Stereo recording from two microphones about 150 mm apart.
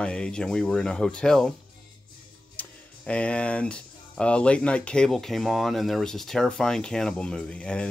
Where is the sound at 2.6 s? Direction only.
10° left (ahead or behind).